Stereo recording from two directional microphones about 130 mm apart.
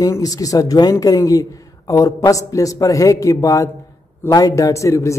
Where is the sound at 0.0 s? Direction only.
25° left (ahead or behind).